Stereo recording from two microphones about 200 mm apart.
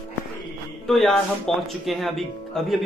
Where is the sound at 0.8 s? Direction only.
Centre (ahead or behind).